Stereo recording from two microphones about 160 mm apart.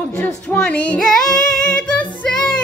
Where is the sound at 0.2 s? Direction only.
10° left (ahead or behind).